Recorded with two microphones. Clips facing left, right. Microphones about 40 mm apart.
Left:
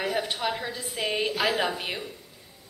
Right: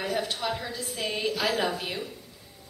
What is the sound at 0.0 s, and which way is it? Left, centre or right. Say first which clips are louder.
A woman's voice: left 2 dB; centre.